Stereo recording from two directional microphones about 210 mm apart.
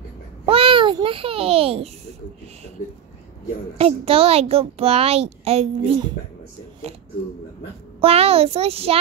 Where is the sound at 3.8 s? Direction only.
30° right (ahead or behind).